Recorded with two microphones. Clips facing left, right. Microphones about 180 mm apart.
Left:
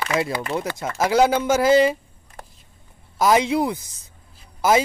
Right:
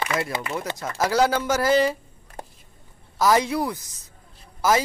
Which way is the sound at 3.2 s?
20° left (ahead or behind).